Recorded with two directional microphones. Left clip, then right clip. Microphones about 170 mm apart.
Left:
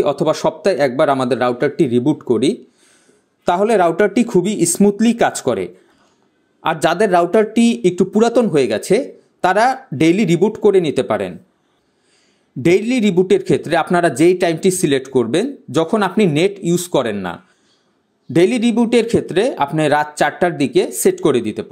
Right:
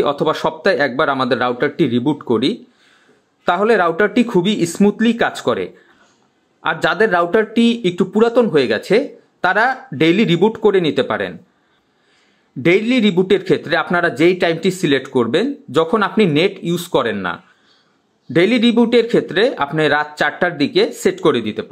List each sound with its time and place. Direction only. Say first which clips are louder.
0.0 s speech: left 1 dB; 30° left (ahead or behind)
12.6 s speech: even; 40° left (ahead or behind)